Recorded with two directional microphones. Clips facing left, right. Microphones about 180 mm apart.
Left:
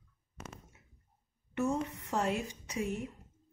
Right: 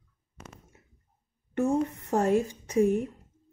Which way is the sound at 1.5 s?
55° right (ahead or behind).